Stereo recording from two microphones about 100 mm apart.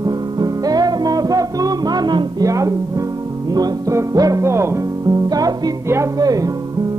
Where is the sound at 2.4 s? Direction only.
35° right (ahead or behind).